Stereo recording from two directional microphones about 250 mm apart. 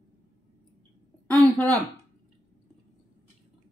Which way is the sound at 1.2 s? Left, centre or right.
Centre.